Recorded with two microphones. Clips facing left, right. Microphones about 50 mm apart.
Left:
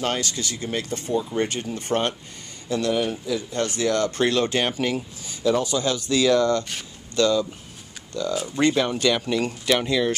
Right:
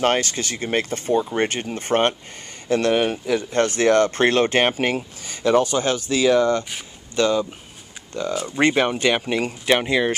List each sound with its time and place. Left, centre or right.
0.0 s speech: right